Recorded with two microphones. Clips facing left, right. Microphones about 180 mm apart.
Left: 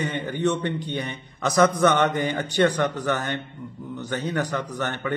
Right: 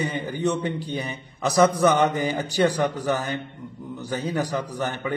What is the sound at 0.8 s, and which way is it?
A man's voice, 35° right (ahead or behind).